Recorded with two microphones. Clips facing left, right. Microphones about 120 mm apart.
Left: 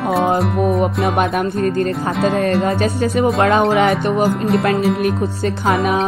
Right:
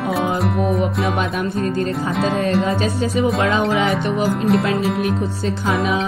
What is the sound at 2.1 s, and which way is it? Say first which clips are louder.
Music: left 2 dB; centre (ahead or behind).